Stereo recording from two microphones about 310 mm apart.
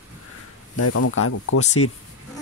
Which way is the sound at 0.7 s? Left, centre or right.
Left.